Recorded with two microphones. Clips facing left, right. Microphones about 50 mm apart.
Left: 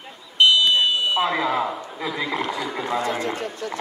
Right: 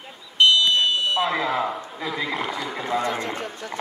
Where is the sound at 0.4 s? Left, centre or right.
Centre.